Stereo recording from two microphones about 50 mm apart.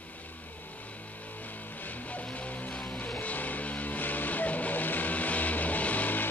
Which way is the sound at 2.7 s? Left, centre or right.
Centre.